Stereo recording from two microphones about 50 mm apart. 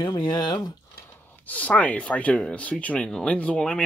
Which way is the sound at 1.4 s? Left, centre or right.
Left.